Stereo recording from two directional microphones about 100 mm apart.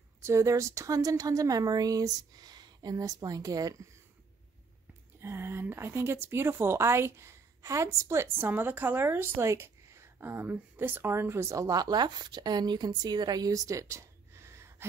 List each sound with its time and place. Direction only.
0.2 s a woman's voice: 30° right (ahead or behind)
5.2 s a woman's voice: 25° right (ahead or behind)